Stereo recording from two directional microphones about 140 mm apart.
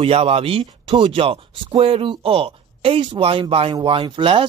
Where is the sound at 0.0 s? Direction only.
45° right (ahead or behind).